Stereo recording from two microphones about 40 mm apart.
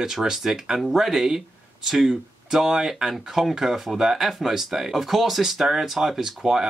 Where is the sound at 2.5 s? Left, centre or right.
Centre.